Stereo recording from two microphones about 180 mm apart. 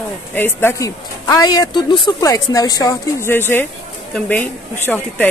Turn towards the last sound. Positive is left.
turn(degrees=10)  # may be behind; listen again after turning